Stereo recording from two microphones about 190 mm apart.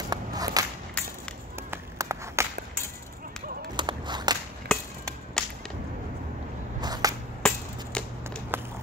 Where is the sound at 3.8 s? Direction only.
25° right (ahead or behind).